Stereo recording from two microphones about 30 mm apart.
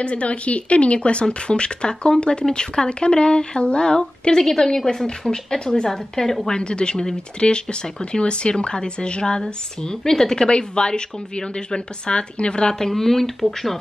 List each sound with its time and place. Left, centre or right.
0.0 s a woman's voice: left
4.4 s speech: centre
6.5 s a woman's voice: left
10.4 s a woman's voice: left
12.7 s speech: centre